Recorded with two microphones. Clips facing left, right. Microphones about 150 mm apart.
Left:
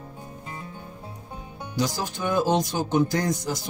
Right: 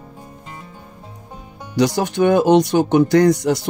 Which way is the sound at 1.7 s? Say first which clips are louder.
Right 11 dB; 75° right (ahead or behind).